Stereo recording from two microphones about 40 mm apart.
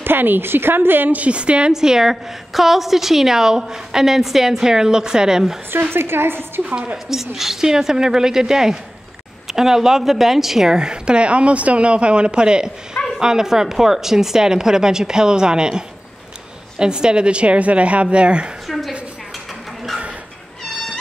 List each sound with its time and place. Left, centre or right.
0.0 s a woman's voice: right
1.1 s a woman's voice: right
1.7 s a woman's voice: centre
5.7 s a woman's voice: right
7.1 s a woman's voice: centre; by 18.5 s right
18.7 s a sound: centre